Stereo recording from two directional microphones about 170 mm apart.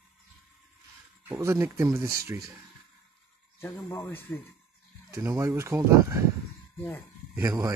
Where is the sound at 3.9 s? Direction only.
15° left (ahead or behind).